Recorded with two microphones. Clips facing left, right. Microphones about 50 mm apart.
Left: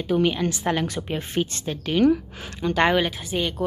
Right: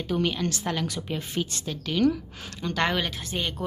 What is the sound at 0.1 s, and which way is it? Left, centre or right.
A woman's voice, centre.